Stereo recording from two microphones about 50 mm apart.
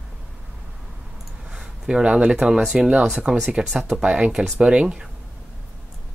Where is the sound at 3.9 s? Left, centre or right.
Centre.